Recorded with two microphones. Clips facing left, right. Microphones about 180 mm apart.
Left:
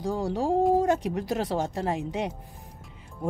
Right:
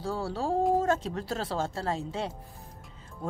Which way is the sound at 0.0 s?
15° left (ahead or behind).